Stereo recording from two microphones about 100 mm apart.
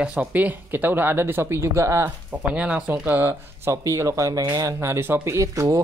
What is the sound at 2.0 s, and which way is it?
Speech, 15° right (ahead or behind).